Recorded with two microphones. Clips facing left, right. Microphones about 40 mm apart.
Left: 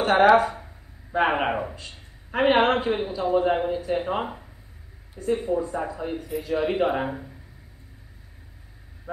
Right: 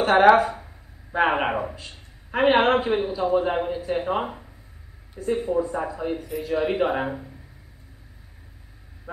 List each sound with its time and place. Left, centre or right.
0.0 s a man's voice: centre